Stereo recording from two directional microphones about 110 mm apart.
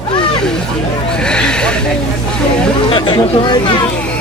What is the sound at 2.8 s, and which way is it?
Speech, 45° left (ahead or behind).